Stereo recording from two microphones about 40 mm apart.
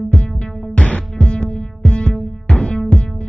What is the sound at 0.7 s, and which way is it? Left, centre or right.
Music, left.